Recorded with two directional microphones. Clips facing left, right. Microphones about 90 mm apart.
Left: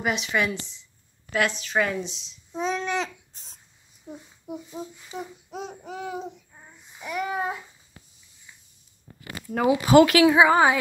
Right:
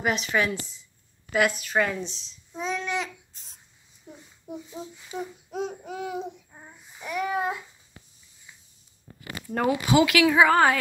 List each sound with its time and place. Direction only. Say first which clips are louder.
0.0 s speech: even; centre (ahead or behind)
2.5 s babbling: left 3 dB; 25° left (ahead or behind)
4.1 s a sound: left 6 dB; 25° left (ahead or behind)
4.5 s speech: left 2 dB; 5° left (ahead or behind)
6.5 s child singing: right 3 dB; 15° right (ahead or behind)
7.0 s speech: right 1 dB; centre (ahead or behind)
9.8 s speech: left 6 dB; 40° left (ahead or behind)
10.2 s a woman's voice: left 2 dB; 20° left (ahead or behind)